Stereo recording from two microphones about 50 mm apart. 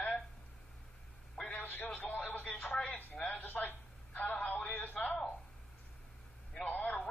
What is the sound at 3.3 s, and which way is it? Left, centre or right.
Dishes, left.